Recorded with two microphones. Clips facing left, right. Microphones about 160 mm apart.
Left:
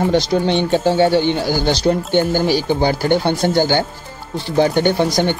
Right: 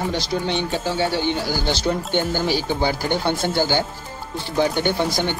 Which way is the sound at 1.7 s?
40° left (ahead or behind).